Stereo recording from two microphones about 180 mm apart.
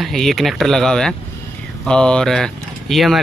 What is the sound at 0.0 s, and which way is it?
A man's voice, centre (ahead or behind).